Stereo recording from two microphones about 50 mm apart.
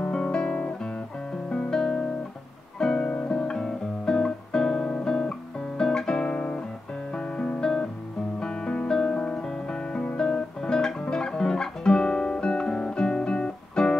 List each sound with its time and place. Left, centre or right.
0.1 s guitar: centre
1.5 s music: centre
2.8 s guitar: centre
7.2 s music: centre